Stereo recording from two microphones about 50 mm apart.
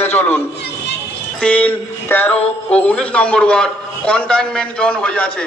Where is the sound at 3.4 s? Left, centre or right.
Centre.